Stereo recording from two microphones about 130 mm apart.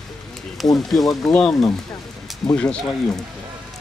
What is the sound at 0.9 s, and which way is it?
Speech, centre (ahead or behind).